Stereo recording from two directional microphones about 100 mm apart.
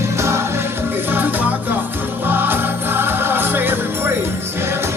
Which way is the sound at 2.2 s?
20° right (ahead or behind).